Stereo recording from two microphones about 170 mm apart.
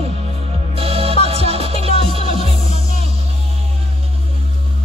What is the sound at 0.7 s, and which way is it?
Music, 35° right (ahead or behind).